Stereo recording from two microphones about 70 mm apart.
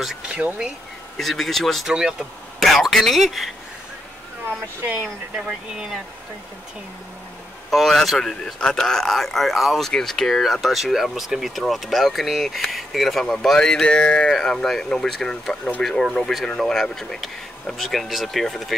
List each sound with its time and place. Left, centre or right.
0.0 s speech: centre
1.9 s speech: centre
2.6 s speech: centre
4.8 s speech: right
5.3 s speech: centre
7.7 s speech: centre